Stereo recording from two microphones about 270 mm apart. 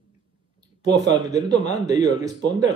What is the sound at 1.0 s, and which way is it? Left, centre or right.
Speech, centre.